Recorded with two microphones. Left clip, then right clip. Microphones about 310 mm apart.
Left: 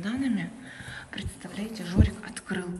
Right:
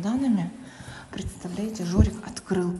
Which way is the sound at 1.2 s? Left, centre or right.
Right.